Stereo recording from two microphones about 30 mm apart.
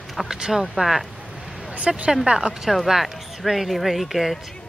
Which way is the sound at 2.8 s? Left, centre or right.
Centre.